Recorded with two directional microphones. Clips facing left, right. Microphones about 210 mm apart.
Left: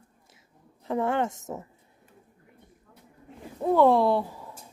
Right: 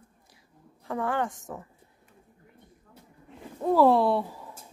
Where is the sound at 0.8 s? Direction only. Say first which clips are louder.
Left 3 dB; 25° left (ahead or behind).